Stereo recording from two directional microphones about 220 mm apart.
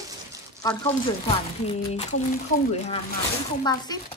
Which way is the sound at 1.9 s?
35° left (ahead or behind).